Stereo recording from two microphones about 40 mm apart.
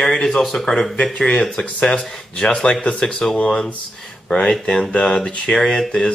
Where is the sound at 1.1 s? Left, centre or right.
Left.